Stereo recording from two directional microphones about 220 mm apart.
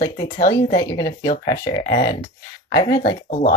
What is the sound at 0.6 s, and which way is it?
Speech, 20° left (ahead or behind).